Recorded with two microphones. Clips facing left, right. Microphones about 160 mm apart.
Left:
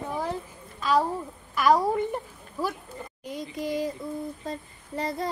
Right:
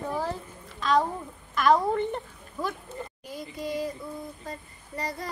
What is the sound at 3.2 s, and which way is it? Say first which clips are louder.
Child singing: left 4 dB; 20° left (ahead or behind).